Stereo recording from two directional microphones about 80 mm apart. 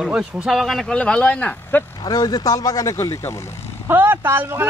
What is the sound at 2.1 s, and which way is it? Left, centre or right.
Speech, left.